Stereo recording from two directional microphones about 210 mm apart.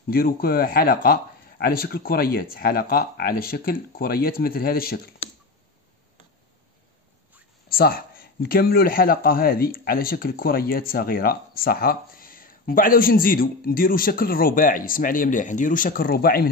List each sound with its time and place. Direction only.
0.1 s a man's voice: 45° left (ahead or behind)
7.7 s a man's voice: 45° left (ahead or behind)